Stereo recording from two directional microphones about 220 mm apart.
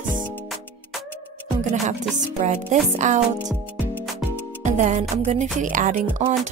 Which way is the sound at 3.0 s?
35° right (ahead or behind).